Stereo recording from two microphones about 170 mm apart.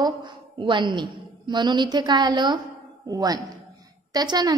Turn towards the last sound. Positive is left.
turn(degrees=-25)  # may be behind; listen again after turning